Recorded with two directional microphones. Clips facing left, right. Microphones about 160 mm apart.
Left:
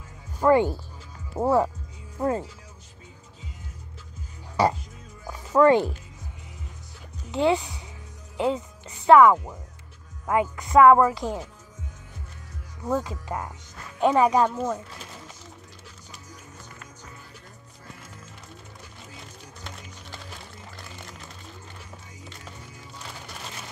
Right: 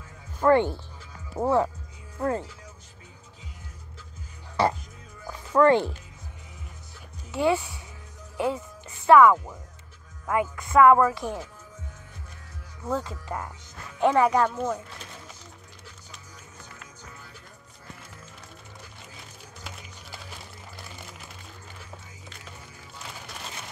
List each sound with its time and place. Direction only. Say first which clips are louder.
0.4 s speech: left 1 dB; 10° left (ahead or behind)
5.2 s music: left 1 dB; 15° left (ahead or behind)
7.2 s speech: left 2 dB; 20° left (ahead or behind)
12.8 s speech: left 3 dB; 15° left (ahead or behind)